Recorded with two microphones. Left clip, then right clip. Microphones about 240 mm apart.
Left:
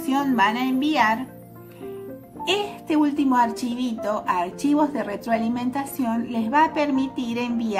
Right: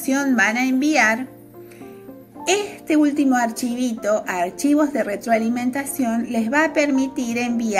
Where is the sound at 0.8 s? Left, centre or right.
Left.